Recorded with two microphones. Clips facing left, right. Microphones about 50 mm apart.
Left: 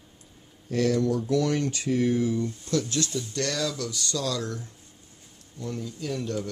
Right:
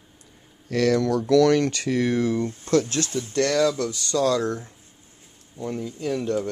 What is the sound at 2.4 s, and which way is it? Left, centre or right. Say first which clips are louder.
Speech: right 6 dB; right.